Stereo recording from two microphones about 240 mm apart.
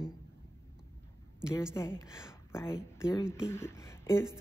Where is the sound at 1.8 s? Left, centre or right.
Centre.